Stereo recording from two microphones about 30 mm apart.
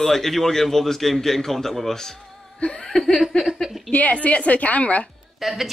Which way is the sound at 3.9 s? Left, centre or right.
Left.